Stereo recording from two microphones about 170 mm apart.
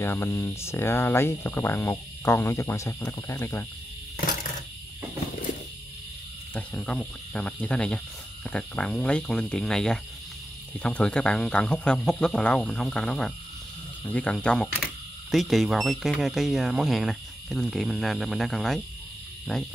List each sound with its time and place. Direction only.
0.0 s speech: 15° left (ahead or behind)
6.5 s speech: 5° left (ahead or behind)